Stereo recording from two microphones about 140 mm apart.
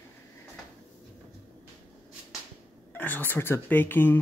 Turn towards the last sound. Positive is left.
turn(degrees=15)  # may be behind; listen again after turning